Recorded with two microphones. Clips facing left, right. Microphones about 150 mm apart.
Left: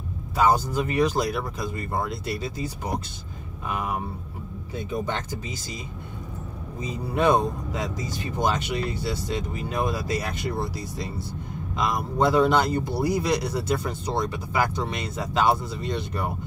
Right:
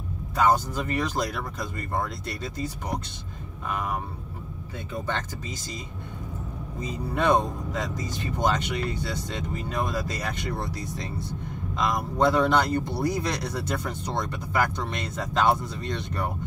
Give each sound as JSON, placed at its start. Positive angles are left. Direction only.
{"t": 0.4, "sound": "a man's voice", "side_deg": 10}
{"t": 4.7, "sound": "a man's voice", "side_deg": 15}
{"t": 7.2, "sound": "a man's voice", "side_deg": 10}